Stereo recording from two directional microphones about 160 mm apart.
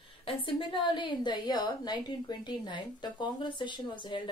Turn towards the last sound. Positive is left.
turn(degrees=30)  # may be behind; listen again after turning